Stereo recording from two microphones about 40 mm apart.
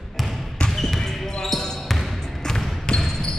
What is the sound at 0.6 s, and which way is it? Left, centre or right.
Basketball bounce, centre.